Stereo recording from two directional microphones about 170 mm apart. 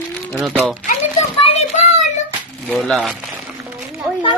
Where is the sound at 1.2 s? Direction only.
40° left (ahead or behind).